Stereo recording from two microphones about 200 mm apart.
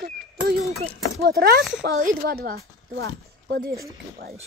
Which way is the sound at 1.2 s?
50° right (ahead or behind).